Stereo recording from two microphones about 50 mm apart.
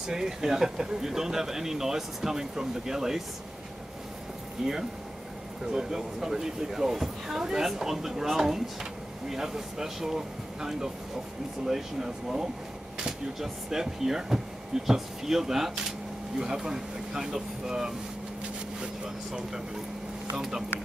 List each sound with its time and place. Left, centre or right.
0.0 s speech: centre
4.6 s speech: centre